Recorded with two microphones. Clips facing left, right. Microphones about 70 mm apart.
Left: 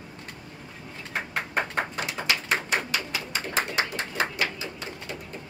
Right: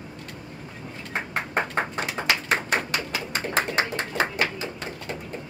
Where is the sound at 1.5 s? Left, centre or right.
Right.